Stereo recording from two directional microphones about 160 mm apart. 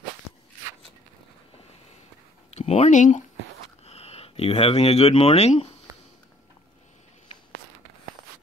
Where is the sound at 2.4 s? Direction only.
40° left (ahead or behind).